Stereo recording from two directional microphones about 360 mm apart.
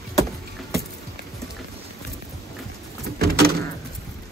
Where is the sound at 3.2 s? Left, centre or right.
Right.